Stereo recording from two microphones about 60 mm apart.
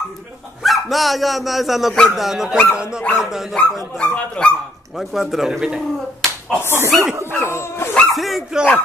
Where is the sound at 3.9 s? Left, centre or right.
Centre.